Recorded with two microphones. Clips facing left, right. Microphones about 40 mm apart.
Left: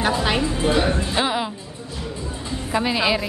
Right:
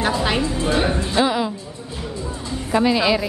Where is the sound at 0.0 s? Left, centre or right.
Centre.